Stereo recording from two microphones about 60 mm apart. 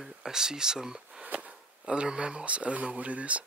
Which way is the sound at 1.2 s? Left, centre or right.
Right.